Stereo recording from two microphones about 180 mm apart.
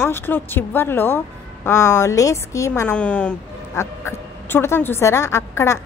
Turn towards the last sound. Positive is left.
turn(degrees=15)  # may be behind; listen again after turning